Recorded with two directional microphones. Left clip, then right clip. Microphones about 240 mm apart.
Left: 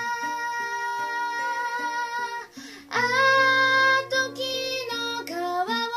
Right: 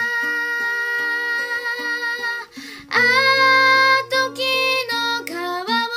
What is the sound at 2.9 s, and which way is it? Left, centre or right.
Music, right.